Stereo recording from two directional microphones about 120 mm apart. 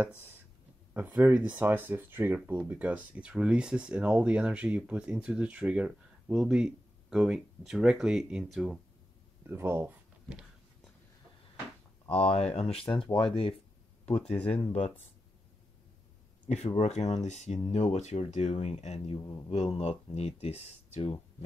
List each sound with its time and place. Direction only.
0.9 s speech: 15° right (ahead or behind)
9.5 s speech: 20° right (ahead or behind)
12.1 s speech: 55° left (ahead or behind)
14.2 s speech: 10° left (ahead or behind)
14.7 s speech: 70° left (ahead or behind)
16.4 s speech: 65° left (ahead or behind)
19.1 s a man's voice: 30° left (ahead or behind)
19.5 s speech: 60° left (ahead or behind)